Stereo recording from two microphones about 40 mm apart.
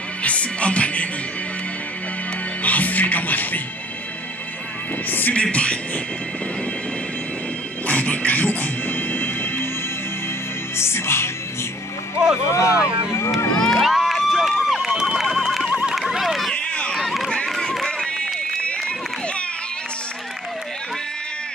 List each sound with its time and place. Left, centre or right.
0.2 s music: left
2.6 s music: left
5.3 s music: left
7.8 s music: left
10.8 s music: left
12.2 s vehicle: right
13.6 s crowd: centre
13.8 s crowd: centre
15.1 s horse: centre
15.9 s a sound: centre
16.5 s a sound: left
17.8 s run: left